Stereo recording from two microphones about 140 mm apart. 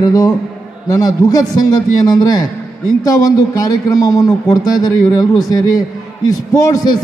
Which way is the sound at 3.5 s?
25° left (ahead or behind).